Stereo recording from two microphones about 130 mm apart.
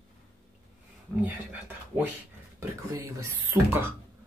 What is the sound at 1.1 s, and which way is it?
Speech, 10° right (ahead or behind).